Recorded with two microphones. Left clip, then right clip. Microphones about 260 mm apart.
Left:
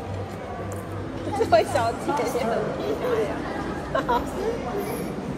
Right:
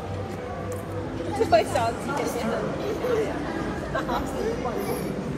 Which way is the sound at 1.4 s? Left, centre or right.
Left.